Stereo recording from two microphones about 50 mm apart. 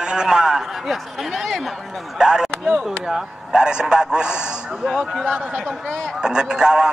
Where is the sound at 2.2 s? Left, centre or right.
Centre.